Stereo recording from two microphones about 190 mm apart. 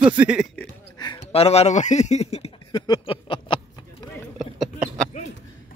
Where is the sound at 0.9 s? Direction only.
20° left (ahead or behind).